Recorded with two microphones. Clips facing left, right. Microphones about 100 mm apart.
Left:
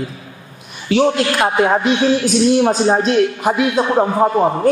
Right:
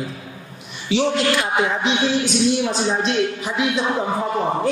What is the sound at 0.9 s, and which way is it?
A woman's voice, 45° left (ahead or behind).